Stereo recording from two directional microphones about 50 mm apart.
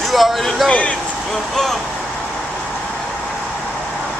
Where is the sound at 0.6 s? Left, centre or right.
Left.